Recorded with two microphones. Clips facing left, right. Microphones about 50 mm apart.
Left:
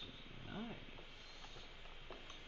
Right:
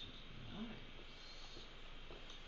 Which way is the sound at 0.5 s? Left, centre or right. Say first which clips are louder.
Left 2 dB; centre.